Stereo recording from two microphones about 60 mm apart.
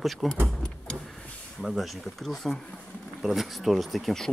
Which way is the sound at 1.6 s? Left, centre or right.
Centre.